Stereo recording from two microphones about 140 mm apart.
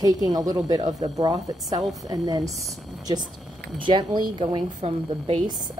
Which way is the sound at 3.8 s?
35° right (ahead or behind).